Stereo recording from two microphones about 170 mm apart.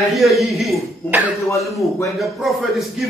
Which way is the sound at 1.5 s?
15° left (ahead or behind).